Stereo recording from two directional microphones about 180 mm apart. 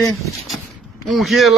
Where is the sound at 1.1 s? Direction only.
Centre (ahead or behind).